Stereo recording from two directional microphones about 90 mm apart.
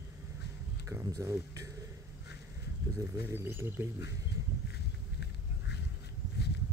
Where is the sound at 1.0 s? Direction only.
35° right (ahead or behind).